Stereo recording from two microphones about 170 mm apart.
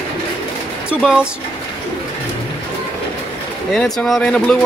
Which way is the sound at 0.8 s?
5° right (ahead or behind).